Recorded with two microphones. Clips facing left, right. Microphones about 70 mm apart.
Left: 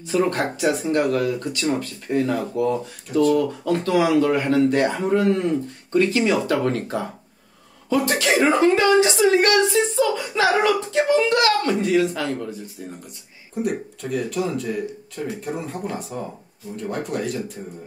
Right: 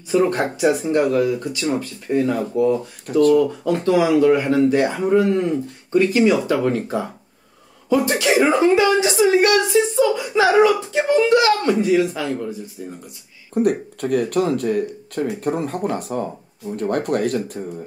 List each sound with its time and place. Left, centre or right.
0.1 s speech: centre
6.1 s speech: centre
6.4 s speech: centre
13.6 s speech: right